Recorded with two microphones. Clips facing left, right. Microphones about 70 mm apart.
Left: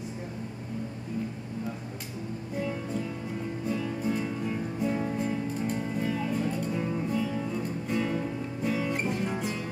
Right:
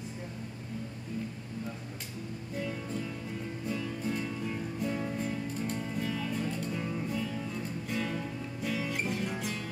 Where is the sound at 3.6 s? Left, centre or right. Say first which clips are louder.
Left 4 dB; centre.